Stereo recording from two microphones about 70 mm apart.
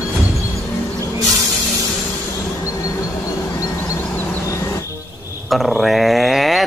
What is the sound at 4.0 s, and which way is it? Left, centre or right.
Vehicle, left.